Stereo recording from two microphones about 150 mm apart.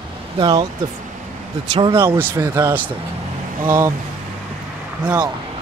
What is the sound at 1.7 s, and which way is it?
Speech, 35° right (ahead or behind).